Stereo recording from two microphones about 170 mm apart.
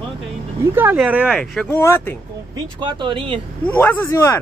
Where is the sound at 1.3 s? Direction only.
5° left (ahead or behind).